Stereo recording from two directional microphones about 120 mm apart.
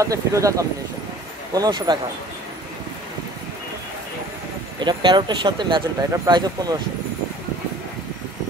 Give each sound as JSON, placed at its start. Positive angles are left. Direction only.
{"t": 0.0, "sound": "speech", "side_deg": -25}
{"t": 4.7, "sound": "speech", "side_deg": -40}